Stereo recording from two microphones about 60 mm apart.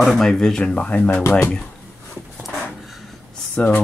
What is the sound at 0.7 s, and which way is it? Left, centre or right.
Speech, left.